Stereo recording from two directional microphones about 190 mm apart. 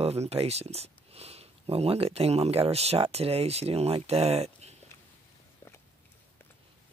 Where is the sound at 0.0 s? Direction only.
35° right (ahead or behind).